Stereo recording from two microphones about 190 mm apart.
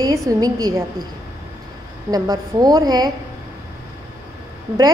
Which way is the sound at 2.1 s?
20° right (ahead or behind).